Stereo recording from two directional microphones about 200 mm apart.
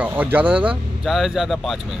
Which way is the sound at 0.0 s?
10° right (ahead or behind).